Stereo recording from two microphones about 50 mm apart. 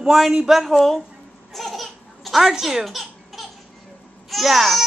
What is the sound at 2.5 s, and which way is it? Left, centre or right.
Speech, centre.